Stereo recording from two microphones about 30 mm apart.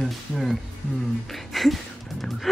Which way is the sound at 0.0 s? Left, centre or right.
Centre.